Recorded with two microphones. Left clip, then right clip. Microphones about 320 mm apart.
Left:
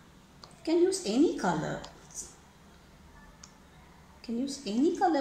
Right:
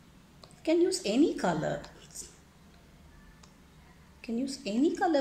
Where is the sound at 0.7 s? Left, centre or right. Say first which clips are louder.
Even; right.